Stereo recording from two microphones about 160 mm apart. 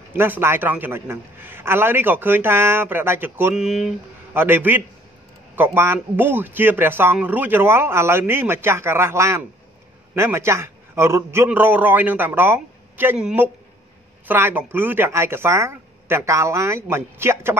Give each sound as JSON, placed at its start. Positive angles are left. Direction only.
{"t": 0.1, "sound": "a man's voice", "side_deg": -15}